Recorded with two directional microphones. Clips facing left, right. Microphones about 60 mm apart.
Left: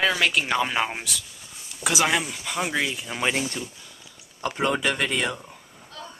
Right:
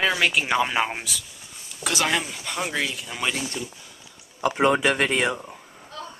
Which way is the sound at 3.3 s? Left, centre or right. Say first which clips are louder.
Left 2 dB; left.